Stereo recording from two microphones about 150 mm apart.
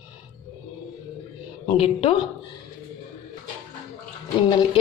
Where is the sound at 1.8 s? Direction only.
35° left (ahead or behind).